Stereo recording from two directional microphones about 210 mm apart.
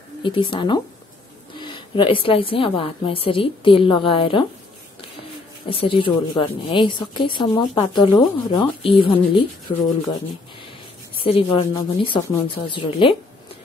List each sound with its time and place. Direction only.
0.2 s a woman's voice: 25° left (ahead or behind)
5.7 s a woman's voice: 25° left (ahead or behind)
11.2 s a woman's voice: 25° left (ahead or behind)